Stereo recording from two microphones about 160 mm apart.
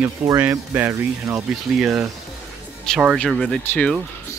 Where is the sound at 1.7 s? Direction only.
5° right (ahead or behind).